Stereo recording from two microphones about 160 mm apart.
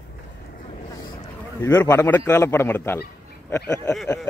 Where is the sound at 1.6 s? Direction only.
15° left (ahead or behind).